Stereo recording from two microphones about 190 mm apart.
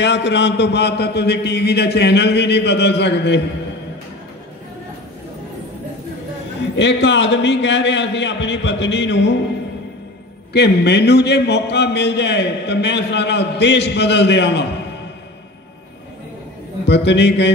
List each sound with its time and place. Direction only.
0.0 s a man's voice: 70° left (ahead or behind)
6.8 s a man's voice: 70° left (ahead or behind)
10.5 s a man's voice: 60° left (ahead or behind)
16.8 s a man's voice: 65° left (ahead or behind)